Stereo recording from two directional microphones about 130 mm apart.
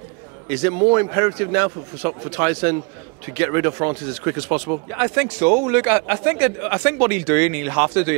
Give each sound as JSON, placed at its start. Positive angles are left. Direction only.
{"t": 0.5, "sound": "speech", "side_deg": -20}